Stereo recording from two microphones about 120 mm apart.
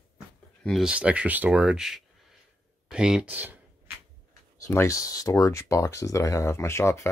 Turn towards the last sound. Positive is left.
turn(degrees=25)  # may be behind; listen again after turning